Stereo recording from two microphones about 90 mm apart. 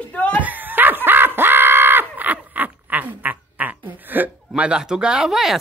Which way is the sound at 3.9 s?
20° right (ahead or behind).